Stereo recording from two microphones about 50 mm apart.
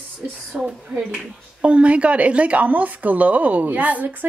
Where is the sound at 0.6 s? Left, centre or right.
Centre.